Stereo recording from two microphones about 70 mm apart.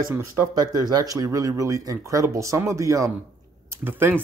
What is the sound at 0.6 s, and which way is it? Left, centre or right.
Speech, right.